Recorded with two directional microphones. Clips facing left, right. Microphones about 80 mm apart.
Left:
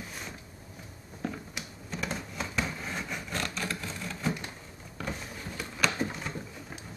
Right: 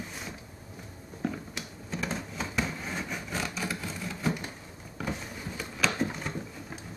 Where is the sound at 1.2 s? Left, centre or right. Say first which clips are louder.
Right 2 dB; centre.